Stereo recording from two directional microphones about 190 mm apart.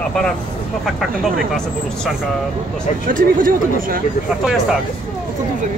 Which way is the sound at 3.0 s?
45° right (ahead or behind).